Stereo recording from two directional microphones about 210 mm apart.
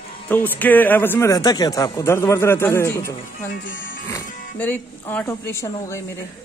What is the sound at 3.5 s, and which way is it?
Speech, 40° left (ahead or behind).